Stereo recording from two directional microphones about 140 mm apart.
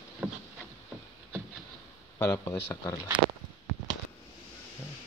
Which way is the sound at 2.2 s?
25° left (ahead or behind).